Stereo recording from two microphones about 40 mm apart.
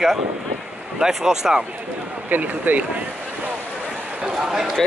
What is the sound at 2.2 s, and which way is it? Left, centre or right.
Speech, right.